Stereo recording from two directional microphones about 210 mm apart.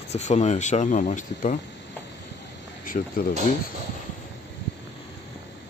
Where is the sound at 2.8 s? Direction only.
40° left (ahead or behind).